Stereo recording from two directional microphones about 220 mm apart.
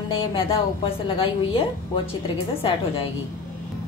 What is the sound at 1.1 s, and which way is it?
A woman's voice, 25° left (ahead or behind).